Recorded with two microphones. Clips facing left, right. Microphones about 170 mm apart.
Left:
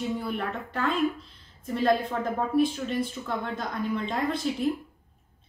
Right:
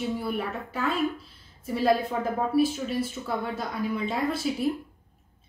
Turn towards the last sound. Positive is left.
turn(degrees=-5)  # may be behind; listen again after turning